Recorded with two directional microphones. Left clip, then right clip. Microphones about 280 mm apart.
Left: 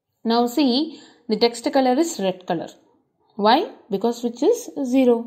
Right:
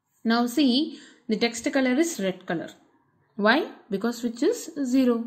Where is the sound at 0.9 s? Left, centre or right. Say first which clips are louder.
Left 4 dB; centre.